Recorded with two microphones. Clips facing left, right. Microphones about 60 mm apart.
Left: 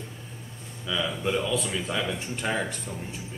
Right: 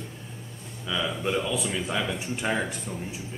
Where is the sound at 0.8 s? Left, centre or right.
Centre.